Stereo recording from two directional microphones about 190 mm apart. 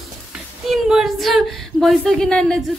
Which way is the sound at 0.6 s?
Centre (ahead or behind).